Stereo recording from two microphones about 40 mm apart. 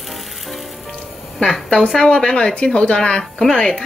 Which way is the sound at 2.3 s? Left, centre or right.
Left.